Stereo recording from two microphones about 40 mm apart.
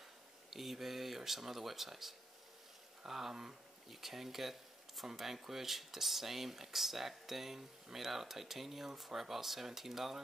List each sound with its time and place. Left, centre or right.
0.5 s speech: centre